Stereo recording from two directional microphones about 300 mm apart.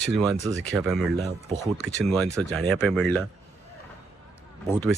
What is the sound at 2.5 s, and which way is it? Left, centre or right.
Speech, centre.